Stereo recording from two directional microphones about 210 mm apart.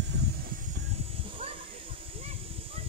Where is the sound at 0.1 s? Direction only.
55° right (ahead or behind).